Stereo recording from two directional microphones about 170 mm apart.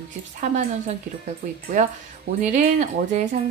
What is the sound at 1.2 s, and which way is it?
A woman's voice, 50° right (ahead or behind).